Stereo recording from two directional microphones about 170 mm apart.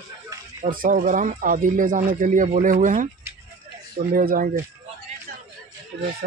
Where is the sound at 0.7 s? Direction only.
55° right (ahead or behind).